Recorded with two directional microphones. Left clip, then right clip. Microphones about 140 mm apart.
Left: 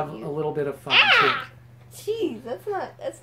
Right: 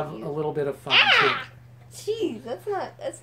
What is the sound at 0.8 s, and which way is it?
A woman's voice, 5° left (ahead or behind).